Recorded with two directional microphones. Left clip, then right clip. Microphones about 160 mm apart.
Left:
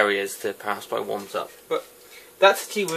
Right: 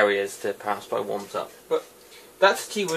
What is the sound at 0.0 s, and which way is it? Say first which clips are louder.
Speech: even; 40° left (ahead or behind).